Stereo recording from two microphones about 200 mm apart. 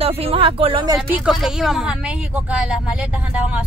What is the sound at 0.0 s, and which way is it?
Speech, 30° right (ahead or behind).